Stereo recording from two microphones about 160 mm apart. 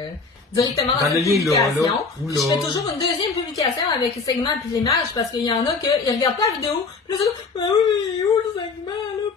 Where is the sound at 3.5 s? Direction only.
20° left (ahead or behind).